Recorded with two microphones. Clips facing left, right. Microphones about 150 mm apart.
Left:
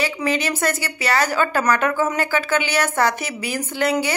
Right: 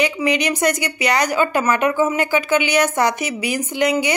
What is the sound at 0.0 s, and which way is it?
Speech, 15° right (ahead or behind).